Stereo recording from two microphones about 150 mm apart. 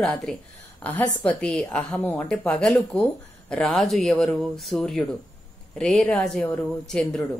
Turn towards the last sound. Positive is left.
turn(degrees=5)  # may be behind; listen again after turning